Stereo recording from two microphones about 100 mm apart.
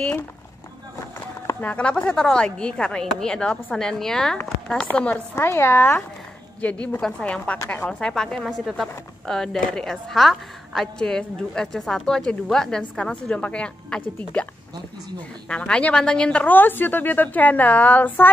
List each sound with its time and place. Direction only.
1.6 s a woman's voice: 10° left (ahead or behind)
6.6 s a woman's voice: 15° left (ahead or behind)